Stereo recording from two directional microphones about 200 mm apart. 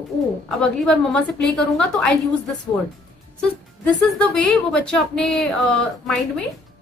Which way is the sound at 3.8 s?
5° left (ahead or behind).